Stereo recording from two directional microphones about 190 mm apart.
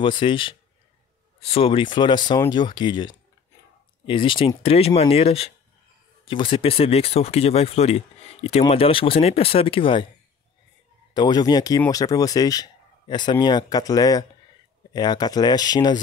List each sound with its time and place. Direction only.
0.0 s speech: 25° left (ahead or behind)
11.1 s speech: 20° left (ahead or behind)